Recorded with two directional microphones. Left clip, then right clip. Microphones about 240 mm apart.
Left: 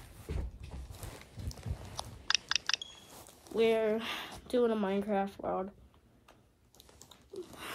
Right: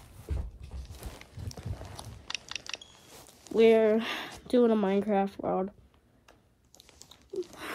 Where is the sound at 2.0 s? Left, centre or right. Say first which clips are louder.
Left 7 dB; centre.